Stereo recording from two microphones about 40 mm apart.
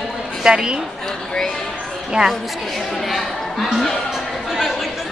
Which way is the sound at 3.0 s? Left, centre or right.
Centre.